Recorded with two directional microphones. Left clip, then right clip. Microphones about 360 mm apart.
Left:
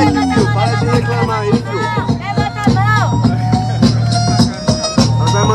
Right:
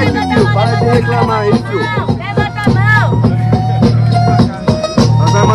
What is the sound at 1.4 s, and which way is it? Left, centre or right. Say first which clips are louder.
Music: right 3 dB; right.